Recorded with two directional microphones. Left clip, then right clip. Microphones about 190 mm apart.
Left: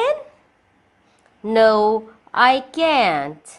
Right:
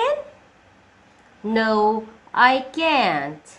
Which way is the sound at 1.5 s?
50° left (ahead or behind).